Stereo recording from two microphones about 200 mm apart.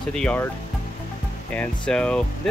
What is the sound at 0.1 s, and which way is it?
Speech, 5° left (ahead or behind).